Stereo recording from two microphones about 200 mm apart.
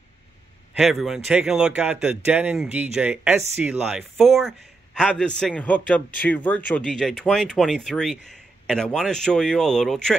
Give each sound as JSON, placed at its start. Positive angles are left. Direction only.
{"t": 0.7, "sound": "speech", "side_deg": 0}